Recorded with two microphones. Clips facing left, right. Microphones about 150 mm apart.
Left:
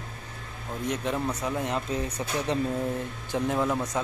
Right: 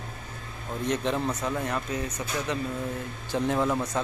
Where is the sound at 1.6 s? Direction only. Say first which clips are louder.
Left 1 dB; 20° left (ahead or behind).